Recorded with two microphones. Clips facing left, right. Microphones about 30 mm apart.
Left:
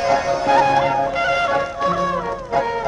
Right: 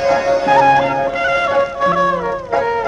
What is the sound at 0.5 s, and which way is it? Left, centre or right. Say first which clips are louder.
Music: right 3 dB; centre.